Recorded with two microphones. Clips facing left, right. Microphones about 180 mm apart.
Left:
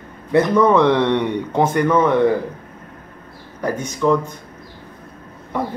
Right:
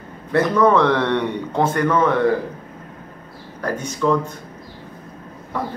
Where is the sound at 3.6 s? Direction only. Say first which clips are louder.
Left 2 dB; 15° left (ahead or behind).